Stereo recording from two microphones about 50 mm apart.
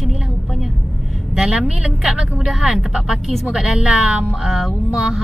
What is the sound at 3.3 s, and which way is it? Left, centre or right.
Speech, centre.